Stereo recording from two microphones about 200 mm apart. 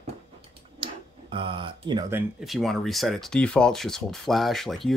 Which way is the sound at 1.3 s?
25° right (ahead or behind).